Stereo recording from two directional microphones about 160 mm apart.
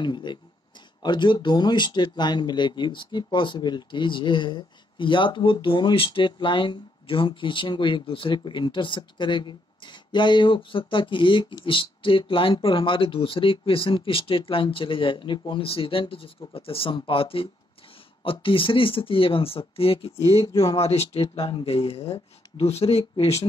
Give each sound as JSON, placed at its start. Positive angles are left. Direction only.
{"t": 0.0, "sound": "speech", "side_deg": 30}
{"t": 20.4, "sound": "speech", "side_deg": 20}
{"t": 20.7, "sound": "speech", "side_deg": 40}